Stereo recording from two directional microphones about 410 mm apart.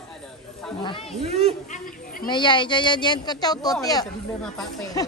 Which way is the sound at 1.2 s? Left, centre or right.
Centre.